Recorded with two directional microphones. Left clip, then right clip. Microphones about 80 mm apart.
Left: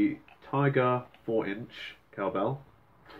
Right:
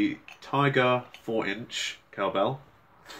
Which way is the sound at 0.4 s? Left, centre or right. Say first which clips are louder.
Right 3 dB; right.